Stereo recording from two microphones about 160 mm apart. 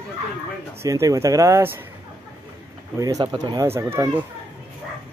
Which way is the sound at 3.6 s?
15° right (ahead or behind).